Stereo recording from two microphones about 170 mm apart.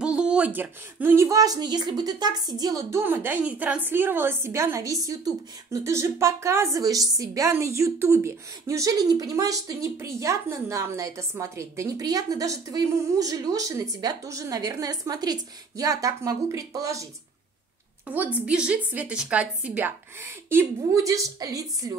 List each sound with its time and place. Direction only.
0.0 s a woman's voice: 5° right (ahead or behind)